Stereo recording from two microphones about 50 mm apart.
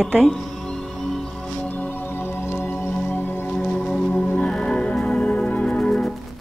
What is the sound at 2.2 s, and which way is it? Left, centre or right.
Music, left.